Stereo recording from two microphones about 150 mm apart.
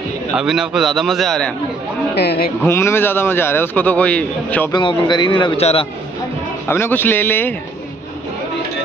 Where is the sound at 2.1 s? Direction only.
90° left.